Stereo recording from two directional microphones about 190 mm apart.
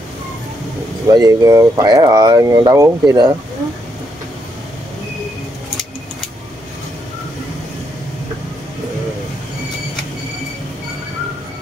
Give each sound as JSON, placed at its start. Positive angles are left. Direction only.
{"t": 1.0, "sound": "speech", "side_deg": -20}